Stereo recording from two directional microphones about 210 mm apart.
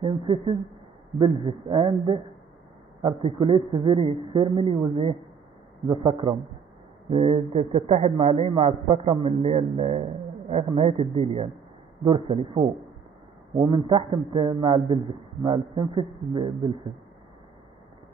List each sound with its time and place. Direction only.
0.0 s a man's voice: 25° right (ahead or behind)